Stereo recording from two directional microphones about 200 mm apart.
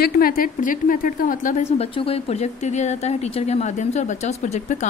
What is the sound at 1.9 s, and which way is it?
Speech, 30° left (ahead or behind).